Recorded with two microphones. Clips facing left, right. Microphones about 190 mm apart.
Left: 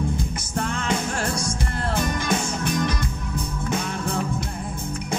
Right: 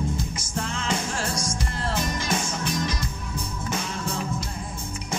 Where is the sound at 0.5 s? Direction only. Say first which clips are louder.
Left 3 dB; 55° left (ahead or behind).